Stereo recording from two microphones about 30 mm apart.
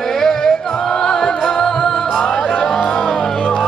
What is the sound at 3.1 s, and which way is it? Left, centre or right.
Music, left.